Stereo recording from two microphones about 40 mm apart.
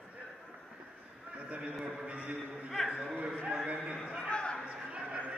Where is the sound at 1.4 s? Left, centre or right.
Right.